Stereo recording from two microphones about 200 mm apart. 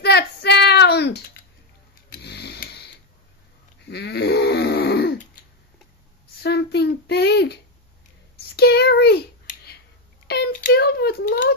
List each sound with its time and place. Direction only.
0.0 s child singing: 55° left (ahead or behind)
2.0 s snoring: 55° left (ahead or behind)
3.9 s grunt: 55° left (ahead or behind)
6.4 s child singing: 55° left (ahead or behind)
8.5 s a sound: 55° left (ahead or behind)